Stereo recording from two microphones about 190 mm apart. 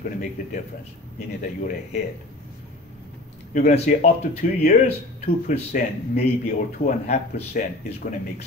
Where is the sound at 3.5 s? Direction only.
35° left (ahead or behind).